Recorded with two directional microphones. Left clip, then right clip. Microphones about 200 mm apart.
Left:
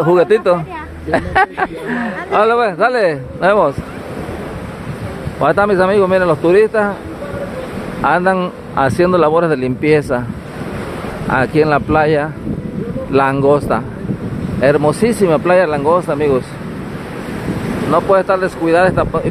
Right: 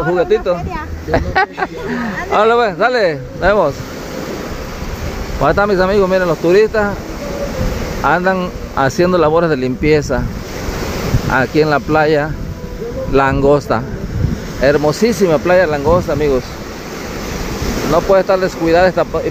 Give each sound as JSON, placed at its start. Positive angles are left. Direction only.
{"t": 0.1, "sound": "speech", "side_deg": 20}
{"t": 1.1, "sound": "speech", "side_deg": 10}
{"t": 5.4, "sound": "speech", "side_deg": 5}
{"t": 8.0, "sound": "speech", "side_deg": 10}
{"t": 11.3, "sound": "speech", "side_deg": 5}
{"t": 17.9, "sound": "speech", "side_deg": 5}